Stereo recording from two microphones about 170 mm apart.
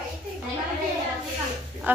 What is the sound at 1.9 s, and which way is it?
Speech, 10° right (ahead or behind).